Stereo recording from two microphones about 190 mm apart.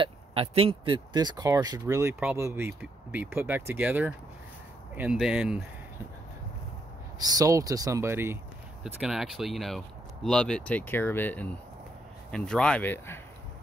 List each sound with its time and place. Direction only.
0.0 s speech: 30° right (ahead or behind); by 5.6 s 5° right (ahead or behind)
7.2 s speech: 20° right (ahead or behind)
8.8 s speech: centre (ahead or behind)